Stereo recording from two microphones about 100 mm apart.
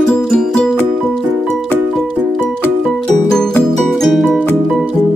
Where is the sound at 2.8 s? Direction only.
Centre (ahead or behind).